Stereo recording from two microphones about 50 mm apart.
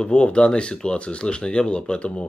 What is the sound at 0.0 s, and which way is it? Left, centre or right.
Speech, left.